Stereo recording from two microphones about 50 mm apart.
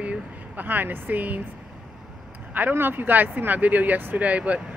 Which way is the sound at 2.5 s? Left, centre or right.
Right.